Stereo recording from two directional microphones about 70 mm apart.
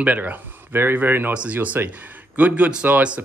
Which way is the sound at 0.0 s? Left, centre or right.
Right.